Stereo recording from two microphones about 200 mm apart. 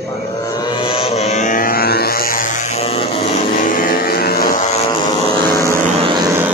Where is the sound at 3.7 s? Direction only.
45° left (ahead or behind).